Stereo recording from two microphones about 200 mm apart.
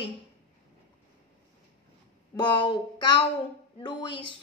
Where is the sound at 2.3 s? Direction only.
25° left (ahead or behind).